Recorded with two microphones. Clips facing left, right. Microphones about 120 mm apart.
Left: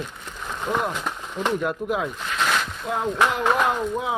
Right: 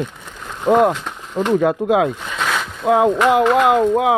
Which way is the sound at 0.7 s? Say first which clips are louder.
Right 12 dB; 90° right.